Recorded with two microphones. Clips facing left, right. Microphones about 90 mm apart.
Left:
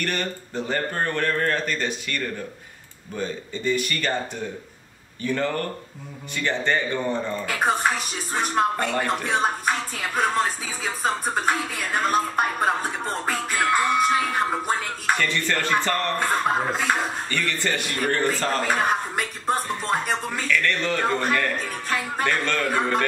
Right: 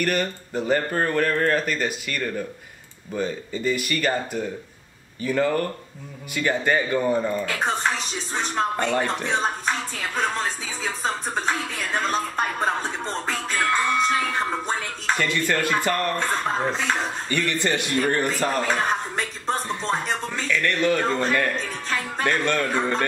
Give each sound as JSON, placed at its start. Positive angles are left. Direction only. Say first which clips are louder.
{"t": 0.0, "sound": "speech", "louder": "right 4 dB", "side_deg": -5}
{"t": 7.4, "sound": "a woman's voice", "louder": "left 2 dB", "side_deg": 10}
{"t": 15.1, "sound": "speech", "louder": "right 1 dB", "side_deg": -15}
{"t": 16.2, "sound": "speech", "louder": "left 2 dB", "side_deg": 10}
{"t": 17.3, "sound": "speech", "louder": "right 6 dB", "side_deg": -15}
{"t": 18.7, "sound": "music", "louder": "left 1 dB", "side_deg": 10}
{"t": 20.4, "sound": "speech", "louder": "right 3 dB", "side_deg": -15}
{"t": 21.1, "sound": "speech", "louder": "even", "side_deg": 10}
{"t": 21.5, "sound": "music", "louder": "left 1 dB", "side_deg": 10}
{"t": 22.2, "sound": "a man's voice", "louder": "right 3 dB", "side_deg": -15}